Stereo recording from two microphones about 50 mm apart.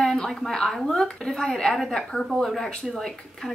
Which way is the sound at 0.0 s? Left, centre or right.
Centre.